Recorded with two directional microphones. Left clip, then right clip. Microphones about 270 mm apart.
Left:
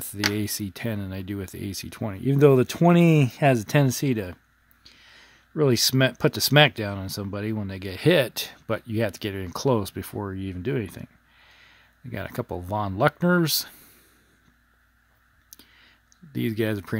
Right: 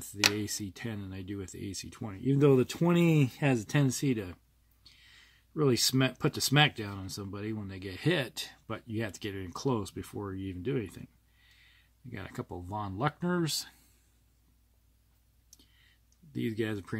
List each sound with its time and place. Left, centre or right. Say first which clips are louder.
0.4 s speech: left 7 dB; left
16.3 s speech: left 7 dB; left